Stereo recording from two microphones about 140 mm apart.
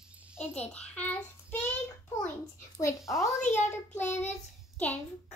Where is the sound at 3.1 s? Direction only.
20° left (ahead or behind).